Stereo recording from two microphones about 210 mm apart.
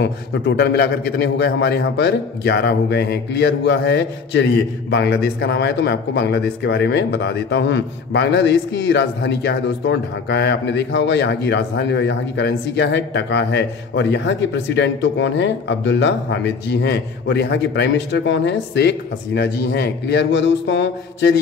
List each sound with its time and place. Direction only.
0.0 s a man's voice: 55° left (ahead or behind)